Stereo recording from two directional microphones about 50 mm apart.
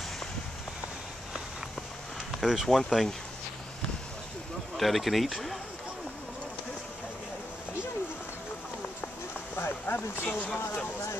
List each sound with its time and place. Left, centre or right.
2.4 s speech: centre
4.7 s speech: centre
9.6 s speech: left